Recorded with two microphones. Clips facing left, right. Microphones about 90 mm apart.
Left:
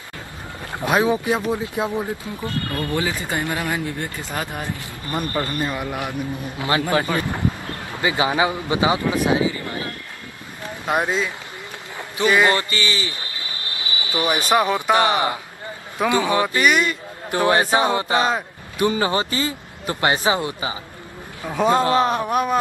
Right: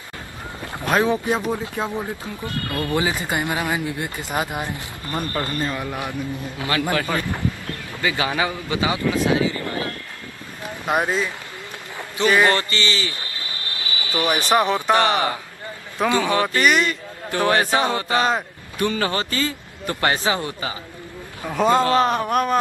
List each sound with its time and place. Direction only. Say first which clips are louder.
0.7 s speech: left 1 dB; 10° left (ahead or behind)
2.2 s speech: left 2 dB; 25° left (ahead or behind)
2.9 s speech: right 3 dB; 15° right (ahead or behind)
5.3 s speech: even; 15° left (ahead or behind)
6.6 s speech: left 2 dB; 25° left (ahead or behind)
9.3 s vehicle: even; 20° left (ahead or behind)
11.0 s speech: even; 10° right (ahead or behind)
12.2 s a sound: even; 15° left (ahead or behind)
14.5 s a sound: even; 5° left (ahead or behind)
15.0 s speech: even; 20° left (ahead or behind)
16.4 s a sound: even; centre (ahead or behind)
17.3 s speech: left 1 dB; 20° left (ahead or behind)
21.5 s a sound: even; 5° left (ahead or behind)